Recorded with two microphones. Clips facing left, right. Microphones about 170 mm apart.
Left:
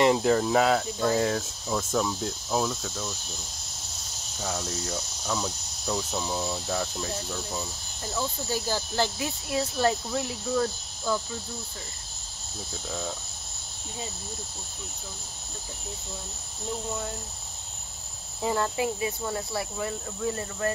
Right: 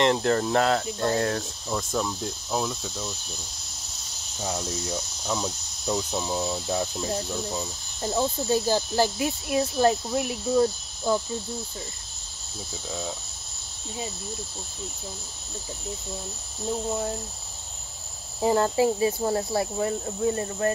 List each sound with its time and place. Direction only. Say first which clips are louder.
0.0 s speech: left 1 dB; 5° left (ahead or behind)
2.8 s insect: even; 10° right (ahead or behind)
4.4 s speech: right 2 dB; 20° right (ahead or behind)
8.0 s speech: right 6 dB; 30° right (ahead or behind)
18.4 s speech: right 6 dB; 30° right (ahead or behind)